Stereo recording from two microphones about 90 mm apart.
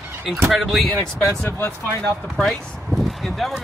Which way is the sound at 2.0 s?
5° left (ahead or behind).